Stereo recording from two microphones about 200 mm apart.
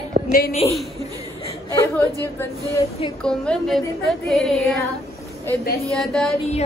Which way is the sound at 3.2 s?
5° left (ahead or behind).